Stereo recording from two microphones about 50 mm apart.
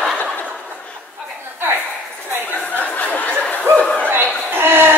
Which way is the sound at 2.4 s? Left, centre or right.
Left.